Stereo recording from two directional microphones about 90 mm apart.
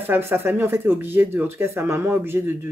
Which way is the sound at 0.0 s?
25° right (ahead or behind).